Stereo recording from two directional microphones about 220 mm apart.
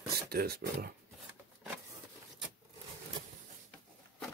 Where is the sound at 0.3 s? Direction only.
45° right (ahead or behind).